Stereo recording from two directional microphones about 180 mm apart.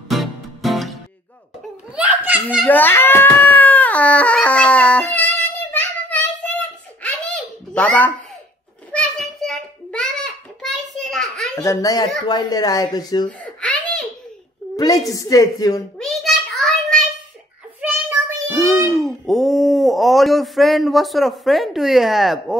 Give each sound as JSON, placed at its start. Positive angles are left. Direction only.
{"t": 0.1, "sound": "music", "side_deg": 0}
{"t": 2.0, "sound": "children playing", "side_deg": -10}
{"t": 2.5, "sound": "a sound", "side_deg": 5}
{"t": 11.6, "sound": "speech", "side_deg": 20}
{"t": 13.4, "sound": "baby laughter", "side_deg": 5}
{"t": 14.8, "sound": "speech", "side_deg": 20}
{"t": 16.0, "sound": "a sound", "side_deg": 0}
{"t": 17.7, "sound": "child singing", "side_deg": -10}
{"t": 18.9, "sound": "a sound", "side_deg": 0}